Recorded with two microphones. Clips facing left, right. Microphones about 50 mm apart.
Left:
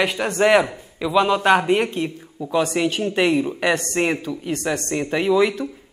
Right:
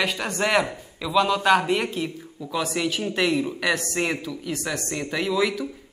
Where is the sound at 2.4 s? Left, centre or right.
Left.